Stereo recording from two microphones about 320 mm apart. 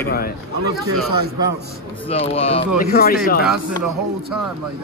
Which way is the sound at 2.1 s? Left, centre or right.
Centre.